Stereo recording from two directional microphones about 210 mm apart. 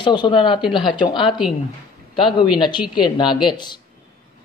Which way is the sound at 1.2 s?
Centre (ahead or behind).